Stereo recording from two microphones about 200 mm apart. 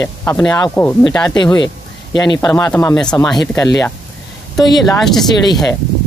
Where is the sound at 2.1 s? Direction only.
20° left (ahead or behind).